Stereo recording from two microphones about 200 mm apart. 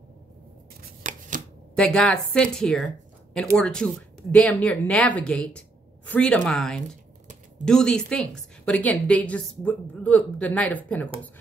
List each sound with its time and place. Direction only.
0.8 s chopping: 40° right (ahead or behind)
1.8 s a woman's voice: 5° left (ahead or behind)